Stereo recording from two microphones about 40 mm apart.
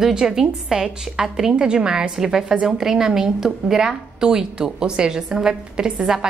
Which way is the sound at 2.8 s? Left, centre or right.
Centre.